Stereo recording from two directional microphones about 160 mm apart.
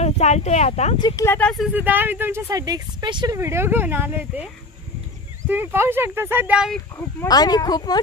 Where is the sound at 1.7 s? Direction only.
10° right (ahead or behind); by 3.3 s 25° right (ahead or behind).